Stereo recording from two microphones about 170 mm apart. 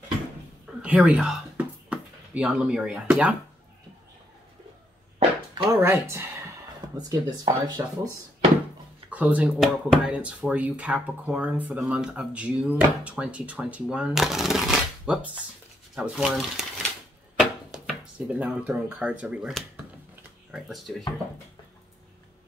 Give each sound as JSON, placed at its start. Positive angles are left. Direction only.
{"t": 0.8, "sound": "speech", "side_deg": -10}
{"t": 5.7, "sound": "speech", "side_deg": -15}
{"t": 9.1, "sound": "speech", "side_deg": -10}
{"t": 20.5, "sound": "speech", "side_deg": 0}